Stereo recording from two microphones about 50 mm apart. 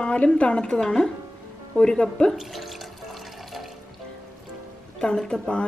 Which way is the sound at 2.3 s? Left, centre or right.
Centre.